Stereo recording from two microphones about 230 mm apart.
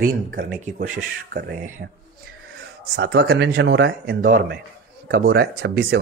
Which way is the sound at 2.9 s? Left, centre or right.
Right.